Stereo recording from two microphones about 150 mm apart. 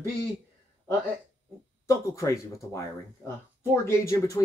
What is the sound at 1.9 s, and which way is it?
Speech, 20° left (ahead or behind).